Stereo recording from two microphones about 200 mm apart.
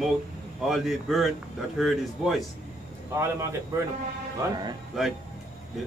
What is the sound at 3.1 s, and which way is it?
Speech, 15° right (ahead or behind).